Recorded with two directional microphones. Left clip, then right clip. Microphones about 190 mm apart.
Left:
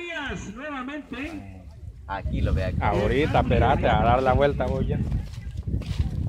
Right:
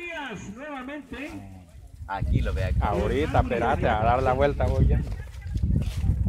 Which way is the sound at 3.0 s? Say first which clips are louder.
Left 3 dB; 10° left (ahead or behind).